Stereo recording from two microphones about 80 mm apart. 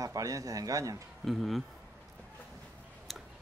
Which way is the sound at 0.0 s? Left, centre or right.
Right.